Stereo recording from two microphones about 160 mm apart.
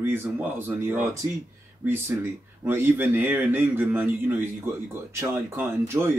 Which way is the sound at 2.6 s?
10° right (ahead or behind).